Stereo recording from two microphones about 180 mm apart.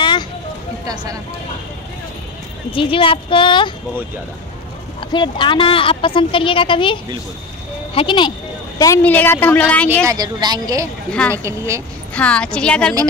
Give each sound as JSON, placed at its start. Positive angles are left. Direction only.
{"t": 2.7, "sound": "a woman's voice", "side_deg": 30}
{"t": 5.1, "sound": "a woman's voice", "side_deg": 25}
{"t": 8.7, "sound": "a woman's voice", "side_deg": 15}
{"t": 10.0, "sound": "a woman's voice", "side_deg": -20}
{"t": 11.1, "sound": "a woman's voice", "side_deg": 5}
{"t": 11.3, "sound": "speech", "side_deg": -15}
{"t": 12.1, "sound": "a woman's voice", "side_deg": 5}